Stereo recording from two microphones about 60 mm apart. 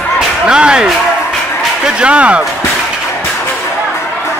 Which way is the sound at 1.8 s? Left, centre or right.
Centre.